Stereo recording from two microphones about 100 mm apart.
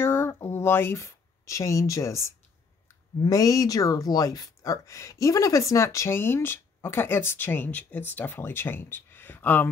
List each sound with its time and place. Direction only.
0.0 s speech: 25° left (ahead or behind)